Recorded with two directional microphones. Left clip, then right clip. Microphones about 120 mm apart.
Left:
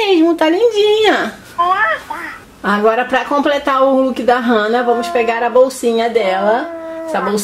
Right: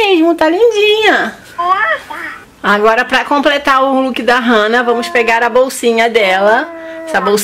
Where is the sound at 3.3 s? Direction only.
40° right (ahead or behind).